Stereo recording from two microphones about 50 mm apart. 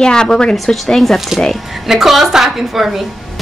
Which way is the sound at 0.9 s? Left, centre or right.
Centre.